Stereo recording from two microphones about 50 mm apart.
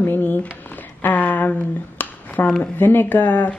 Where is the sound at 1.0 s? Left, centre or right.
Left.